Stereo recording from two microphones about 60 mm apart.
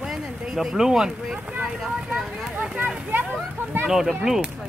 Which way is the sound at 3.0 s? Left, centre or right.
Right.